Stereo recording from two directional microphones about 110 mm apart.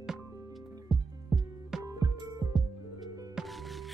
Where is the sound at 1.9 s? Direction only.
30° right (ahead or behind).